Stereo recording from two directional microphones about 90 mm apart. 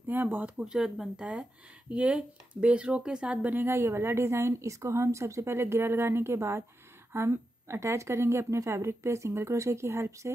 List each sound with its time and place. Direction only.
0.0 s speech: 20° right (ahead or behind)
0.6 s speech: 5° right (ahead or behind)
3.6 s a woman's voice: 30° right (ahead or behind)